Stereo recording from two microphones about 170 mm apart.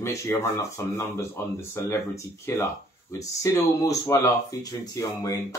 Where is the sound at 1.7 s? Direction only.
15° left (ahead or behind).